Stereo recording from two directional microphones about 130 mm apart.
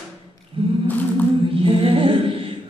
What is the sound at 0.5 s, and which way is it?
A capella, 40° right (ahead or behind).